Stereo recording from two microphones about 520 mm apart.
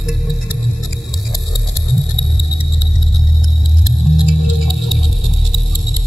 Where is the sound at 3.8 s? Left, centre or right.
Left.